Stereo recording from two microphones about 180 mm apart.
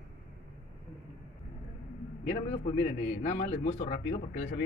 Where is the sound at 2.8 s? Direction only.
50° left (ahead or behind).